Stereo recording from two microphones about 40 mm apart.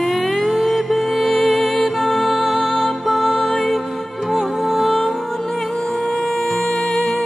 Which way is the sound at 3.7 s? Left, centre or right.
Centre.